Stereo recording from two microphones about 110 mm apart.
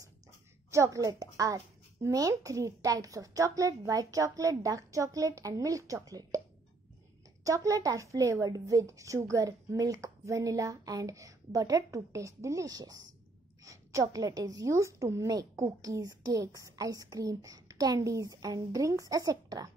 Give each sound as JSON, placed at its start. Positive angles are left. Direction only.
{"t": 0.7, "sound": "a woman's voice", "side_deg": -30}
{"t": 7.4, "sound": "a woman's voice", "side_deg": -30}